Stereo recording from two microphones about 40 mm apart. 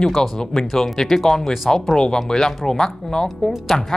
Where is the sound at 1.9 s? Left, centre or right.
Centre.